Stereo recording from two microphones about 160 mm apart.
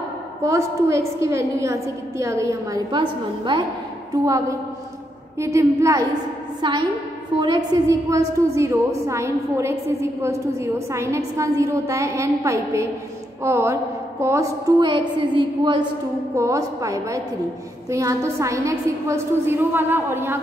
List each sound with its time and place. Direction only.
0.4 s a woman's voice: 15° right (ahead or behind)
15.1 s a woman's voice: 30° right (ahead or behind)
16.3 s a woman's voice: 20° right (ahead or behind)